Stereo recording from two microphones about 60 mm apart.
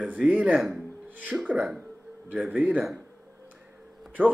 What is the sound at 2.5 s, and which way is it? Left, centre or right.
Speech, right.